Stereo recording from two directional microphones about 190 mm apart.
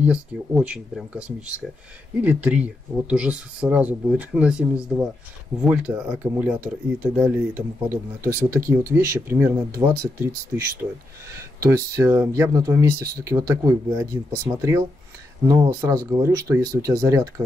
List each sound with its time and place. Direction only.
0.0 s speech: 5° right (ahead or behind)